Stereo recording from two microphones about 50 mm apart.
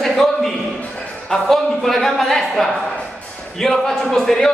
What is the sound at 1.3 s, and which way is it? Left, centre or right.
Speech, centre.